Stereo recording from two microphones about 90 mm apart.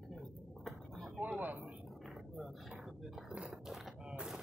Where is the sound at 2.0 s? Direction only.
5° right (ahead or behind).